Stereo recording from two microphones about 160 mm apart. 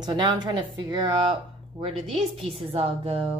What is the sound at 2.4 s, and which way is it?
Speech, 35° right (ahead or behind).